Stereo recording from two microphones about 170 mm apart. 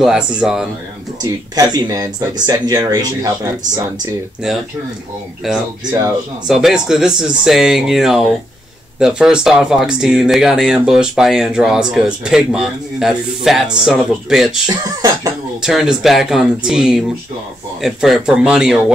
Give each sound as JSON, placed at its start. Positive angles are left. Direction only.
{"t": 0.0, "sound": "speech", "side_deg": -5}
{"t": 1.2, "sound": "speech", "side_deg": -20}
{"t": 5.4, "sound": "speech", "side_deg": 0}
{"t": 14.7, "sound": "speech", "side_deg": -20}
{"t": 15.6, "sound": "speech", "side_deg": -5}